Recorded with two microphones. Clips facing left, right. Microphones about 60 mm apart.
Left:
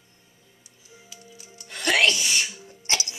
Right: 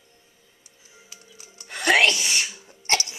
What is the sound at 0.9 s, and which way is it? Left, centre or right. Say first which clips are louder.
Music: left 3 dB; right.